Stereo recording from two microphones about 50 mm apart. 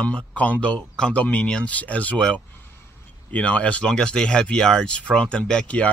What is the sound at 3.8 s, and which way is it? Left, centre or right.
Speech, centre.